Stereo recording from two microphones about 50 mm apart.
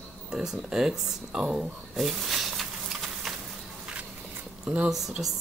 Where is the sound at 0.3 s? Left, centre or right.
Centre.